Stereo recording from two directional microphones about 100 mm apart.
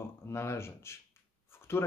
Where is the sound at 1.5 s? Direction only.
25° left (ahead or behind).